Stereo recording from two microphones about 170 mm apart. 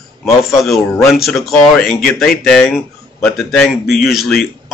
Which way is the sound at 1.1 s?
Centre (ahead or behind).